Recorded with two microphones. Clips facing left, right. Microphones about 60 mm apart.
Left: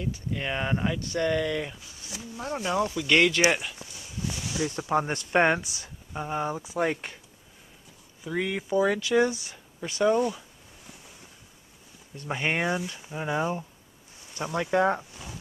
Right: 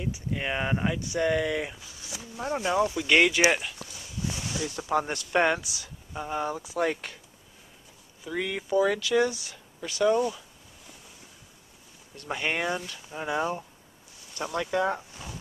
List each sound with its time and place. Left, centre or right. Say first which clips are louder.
0.0 s speech: even; centre
4.2 s a sound: even; left
4.6 s speech: left 2 dB; left
6.1 s speech: left 1 dB; centre
8.3 s speech: left 1 dB; centre
12.3 s speech: left 2 dB; centre